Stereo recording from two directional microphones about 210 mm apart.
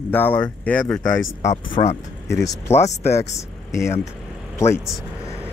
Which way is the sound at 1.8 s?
30° left (ahead or behind).